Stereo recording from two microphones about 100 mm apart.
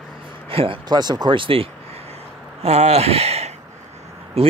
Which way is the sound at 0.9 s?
45° right (ahead or behind).